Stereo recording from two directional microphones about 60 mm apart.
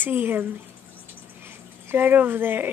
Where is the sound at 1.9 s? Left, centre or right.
Right.